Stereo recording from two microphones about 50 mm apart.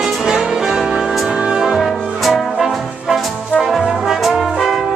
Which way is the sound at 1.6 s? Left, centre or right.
Centre.